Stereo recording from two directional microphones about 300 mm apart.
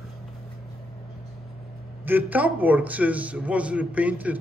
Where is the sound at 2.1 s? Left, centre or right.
Centre.